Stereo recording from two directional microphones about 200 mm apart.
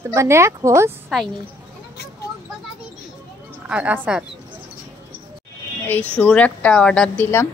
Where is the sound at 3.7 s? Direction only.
5° right (ahead or behind).